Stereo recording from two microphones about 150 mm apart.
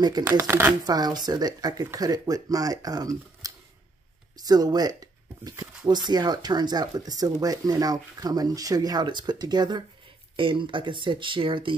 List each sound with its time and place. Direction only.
0.2 s speech: 15° right (ahead or behind)
0.8 s speech: 25° right (ahead or behind)